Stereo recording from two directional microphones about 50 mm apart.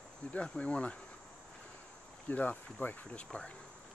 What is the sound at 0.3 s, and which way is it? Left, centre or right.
Speech, left.